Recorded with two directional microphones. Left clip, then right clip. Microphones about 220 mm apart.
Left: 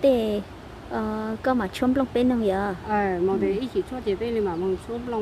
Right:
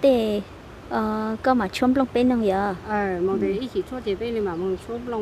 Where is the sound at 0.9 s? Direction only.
20° right (ahead or behind).